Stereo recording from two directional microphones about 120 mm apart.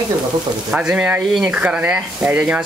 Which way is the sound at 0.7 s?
10° right (ahead or behind).